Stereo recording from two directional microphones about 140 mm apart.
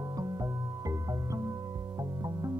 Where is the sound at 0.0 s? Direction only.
25° right (ahead or behind).